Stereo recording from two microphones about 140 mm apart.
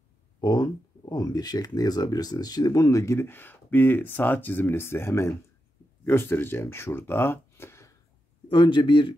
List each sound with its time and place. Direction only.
0.4 s speech: 30° left (ahead or behind)
8.5 s a man's voice: 35° left (ahead or behind)